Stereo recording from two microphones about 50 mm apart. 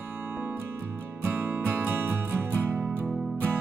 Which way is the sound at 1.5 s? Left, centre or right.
Right.